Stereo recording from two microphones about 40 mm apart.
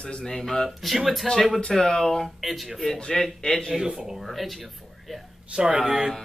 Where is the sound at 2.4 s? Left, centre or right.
Centre.